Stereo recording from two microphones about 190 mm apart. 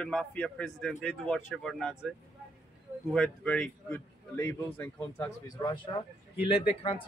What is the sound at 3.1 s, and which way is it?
Speech, 5° left (ahead or behind).